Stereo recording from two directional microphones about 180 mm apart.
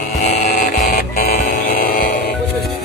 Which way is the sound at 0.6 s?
50° left (ahead or behind).